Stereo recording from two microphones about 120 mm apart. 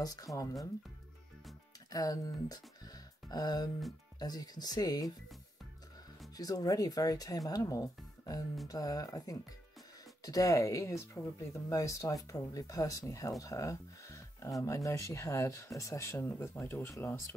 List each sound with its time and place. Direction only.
0.0 s speech: 30° left (ahead or behind)
1.9 s speech: 30° left (ahead or behind)
6.3 s speech: 30° left (ahead or behind)